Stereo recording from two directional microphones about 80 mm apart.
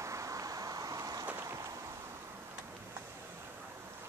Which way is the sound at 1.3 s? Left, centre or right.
Right.